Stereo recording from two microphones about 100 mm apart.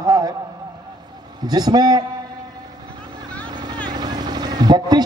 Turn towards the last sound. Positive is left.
turn(degrees=-45)  # may be behind; listen again after turning